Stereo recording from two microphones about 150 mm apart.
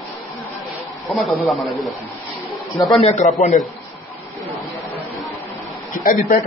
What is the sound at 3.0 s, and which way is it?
Speech, 45° left (ahead or behind).